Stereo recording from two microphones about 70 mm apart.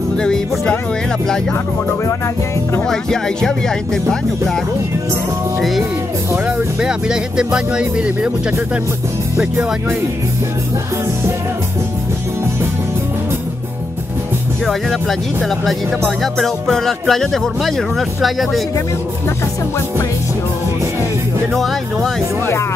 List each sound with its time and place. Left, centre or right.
0.1 s music: centre
2.9 s speech: centre
6.3 s speech: centre
14.7 s speech: centre
21.5 s speech: centre